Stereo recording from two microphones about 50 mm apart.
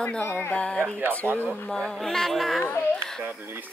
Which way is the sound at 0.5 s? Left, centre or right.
Centre.